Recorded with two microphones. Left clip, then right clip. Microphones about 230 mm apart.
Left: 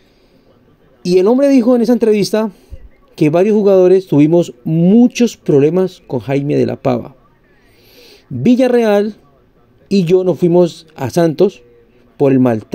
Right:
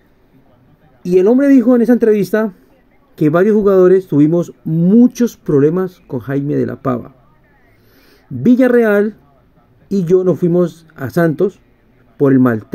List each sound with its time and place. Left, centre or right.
1.0 s speech: centre
8.1 s speech: centre